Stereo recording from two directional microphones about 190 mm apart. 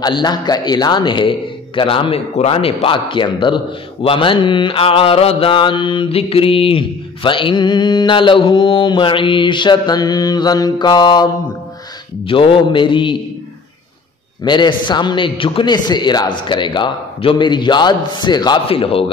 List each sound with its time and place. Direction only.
0.0 s a man's voice: 20° left (ahead or behind)
12.3 s a man's voice: 25° left (ahead or behind)
14.4 s a man's voice: 25° left (ahead or behind)